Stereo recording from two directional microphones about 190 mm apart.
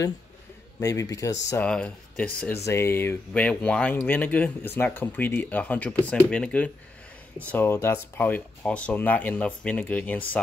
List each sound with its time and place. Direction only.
0.7 s speech: 20° left (ahead or behind)
1.5 s speech: 5° left (ahead or behind)